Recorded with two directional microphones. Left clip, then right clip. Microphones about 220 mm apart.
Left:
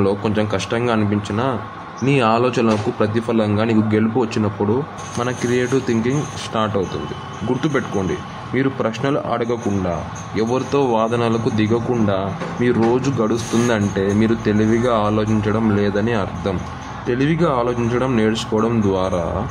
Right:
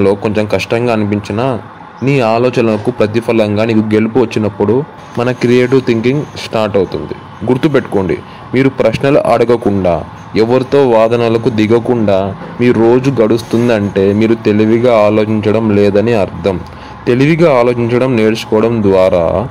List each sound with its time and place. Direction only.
0.0 s a man's voice: 25° right (ahead or behind)
8.5 s a man's voice: 30° right (ahead or behind)